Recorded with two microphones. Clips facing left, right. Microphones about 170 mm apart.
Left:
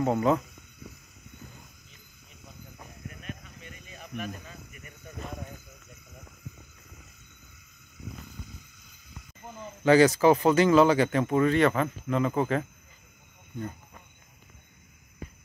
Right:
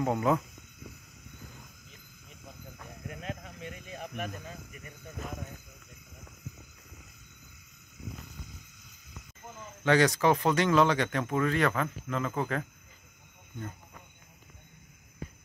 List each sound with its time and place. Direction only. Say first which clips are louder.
0.0 s speech: left 3 dB; 5° right (ahead or behind)
3.1 s a sound: right 4 dB; 90° right; by 4.3 s 55° right (ahead or behind)
9.8 s speech: left 5 dB; centre (ahead or behind)